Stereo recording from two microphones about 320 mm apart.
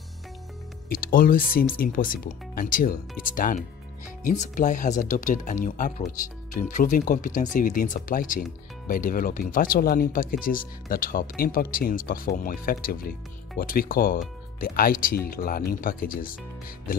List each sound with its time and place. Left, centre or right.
0.8 s speech: left